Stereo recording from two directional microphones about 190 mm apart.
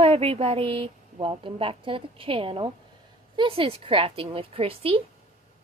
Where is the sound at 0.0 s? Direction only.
30° right (ahead or behind).